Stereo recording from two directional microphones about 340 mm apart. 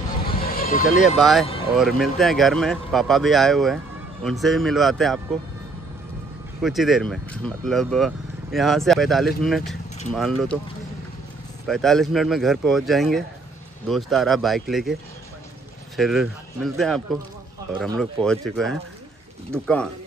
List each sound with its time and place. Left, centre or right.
0.4 s vehicle: left
1.0 s speech: centre
6.6 s speech: centre
11.6 s speech: centre
16.0 s speech: centre